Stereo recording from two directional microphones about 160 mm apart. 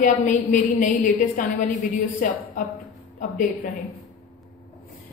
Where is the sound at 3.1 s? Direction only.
55° left (ahead or behind).